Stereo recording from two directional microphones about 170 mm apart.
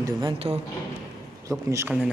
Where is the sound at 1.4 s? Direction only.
15° right (ahead or behind).